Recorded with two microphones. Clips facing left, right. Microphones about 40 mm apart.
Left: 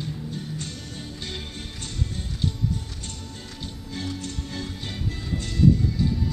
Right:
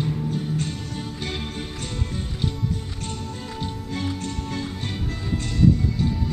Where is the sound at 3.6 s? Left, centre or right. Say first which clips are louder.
Right 4 dB; centre.